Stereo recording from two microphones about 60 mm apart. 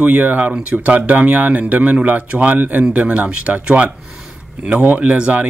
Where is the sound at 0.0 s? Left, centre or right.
Right.